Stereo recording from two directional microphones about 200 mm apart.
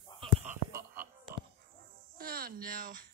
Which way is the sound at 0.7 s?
15° right (ahead or behind).